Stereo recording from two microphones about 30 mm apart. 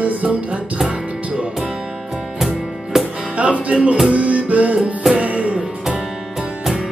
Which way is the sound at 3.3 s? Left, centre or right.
Right.